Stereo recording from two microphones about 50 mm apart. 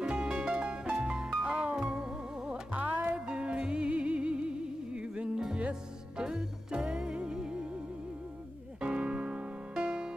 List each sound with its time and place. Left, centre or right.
0.0 s music: centre
2.7 s music: right
3.3 s music: centre
6.2 s music: centre
8.8 s music: right